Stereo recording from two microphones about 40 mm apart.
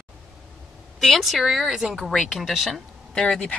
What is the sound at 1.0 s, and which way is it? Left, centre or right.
Speech, centre.